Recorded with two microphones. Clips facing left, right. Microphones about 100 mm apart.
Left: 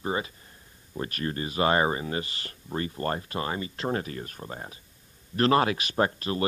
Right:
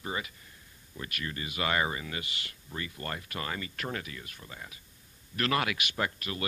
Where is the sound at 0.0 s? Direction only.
30° left (ahead or behind).